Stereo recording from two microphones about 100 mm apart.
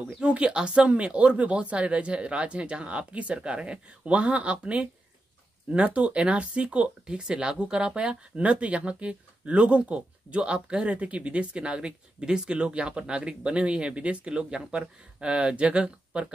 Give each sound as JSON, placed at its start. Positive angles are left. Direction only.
{"t": 0.2, "sound": "speech", "side_deg": -10}